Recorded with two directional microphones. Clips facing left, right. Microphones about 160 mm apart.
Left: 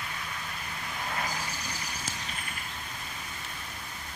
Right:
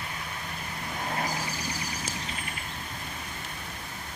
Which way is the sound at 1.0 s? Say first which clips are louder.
Right 3 dB; 35° right (ahead or behind).